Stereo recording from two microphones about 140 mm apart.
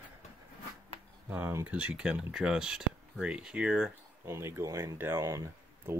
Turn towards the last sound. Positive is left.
turn(degrees=-20)  # may be behind; listen again after turning